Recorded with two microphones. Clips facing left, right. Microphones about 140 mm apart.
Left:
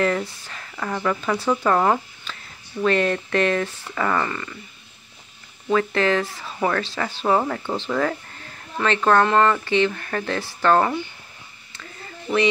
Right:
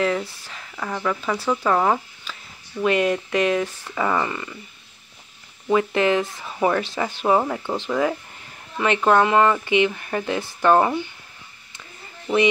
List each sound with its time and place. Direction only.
0.0 s speech: 5° right (ahead or behind)
5.7 s speech: 15° right (ahead or behind)
12.3 s speech: 15° right (ahead or behind)